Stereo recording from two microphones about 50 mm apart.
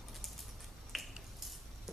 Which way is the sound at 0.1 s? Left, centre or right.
Centre.